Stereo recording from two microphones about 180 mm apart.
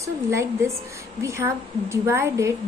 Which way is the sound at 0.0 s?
15° right (ahead or behind).